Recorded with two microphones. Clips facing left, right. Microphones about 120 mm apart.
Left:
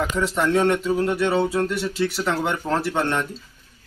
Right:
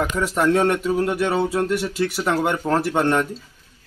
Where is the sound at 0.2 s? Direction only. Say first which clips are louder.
Right 1 dB; 10° right (ahead or behind).